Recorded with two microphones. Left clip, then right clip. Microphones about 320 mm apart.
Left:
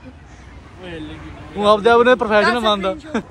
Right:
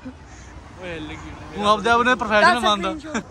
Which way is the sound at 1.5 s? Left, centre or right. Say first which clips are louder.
Left 5 dB; centre.